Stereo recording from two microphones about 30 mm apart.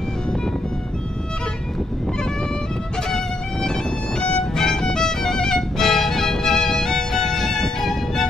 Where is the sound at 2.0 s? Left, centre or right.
Left.